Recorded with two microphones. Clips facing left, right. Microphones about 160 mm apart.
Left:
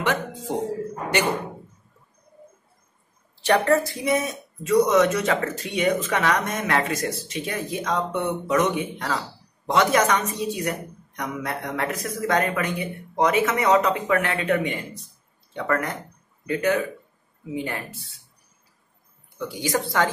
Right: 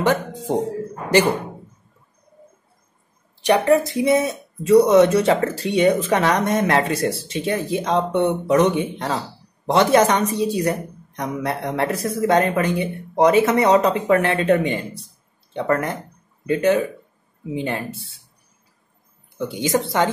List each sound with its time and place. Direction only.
0.0 s speech: 35° right (ahead or behind)
3.4 s speech: 15° right (ahead or behind)
19.3 s speech: 25° right (ahead or behind)